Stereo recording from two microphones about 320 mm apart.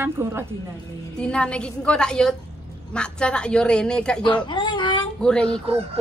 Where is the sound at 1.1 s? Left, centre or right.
Centre.